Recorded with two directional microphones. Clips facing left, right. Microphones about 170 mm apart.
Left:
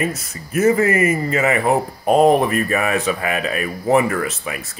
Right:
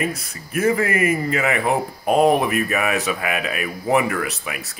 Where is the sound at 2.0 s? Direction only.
35° left (ahead or behind).